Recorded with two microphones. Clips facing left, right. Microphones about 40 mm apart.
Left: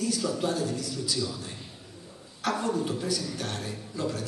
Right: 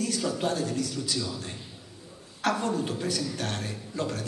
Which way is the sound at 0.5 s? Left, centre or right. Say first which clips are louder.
Right 1 dB; right.